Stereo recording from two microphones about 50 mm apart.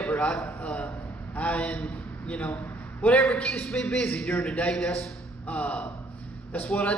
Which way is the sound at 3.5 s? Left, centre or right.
Centre.